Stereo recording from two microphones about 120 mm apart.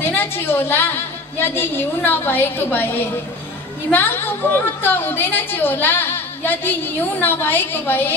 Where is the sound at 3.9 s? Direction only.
15° left (ahead or behind).